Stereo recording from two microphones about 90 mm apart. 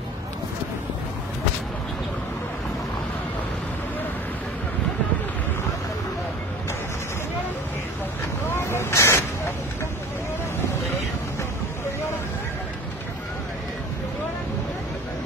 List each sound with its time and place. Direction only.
8.5 s vehicle: 30° left (ahead or behind)